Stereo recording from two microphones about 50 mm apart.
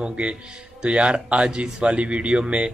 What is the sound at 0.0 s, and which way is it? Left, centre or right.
Speech, right.